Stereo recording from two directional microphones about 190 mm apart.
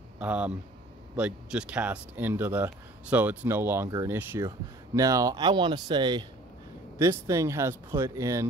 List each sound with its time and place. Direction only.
0.2 s speech: 5° right (ahead or behind)